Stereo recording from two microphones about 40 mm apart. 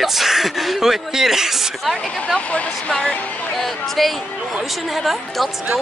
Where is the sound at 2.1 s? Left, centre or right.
Centre.